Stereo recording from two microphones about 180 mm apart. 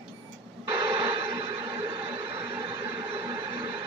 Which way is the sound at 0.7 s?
30° right (ahead or behind).